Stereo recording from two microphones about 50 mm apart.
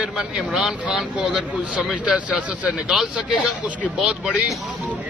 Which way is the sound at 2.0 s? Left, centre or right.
Right.